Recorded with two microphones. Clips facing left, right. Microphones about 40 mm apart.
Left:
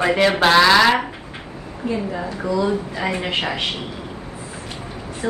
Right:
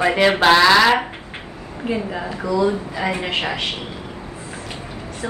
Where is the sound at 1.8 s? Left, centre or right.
Right.